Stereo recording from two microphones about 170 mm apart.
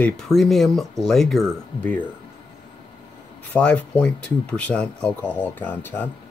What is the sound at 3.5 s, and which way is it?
Speech, 5° left (ahead or behind).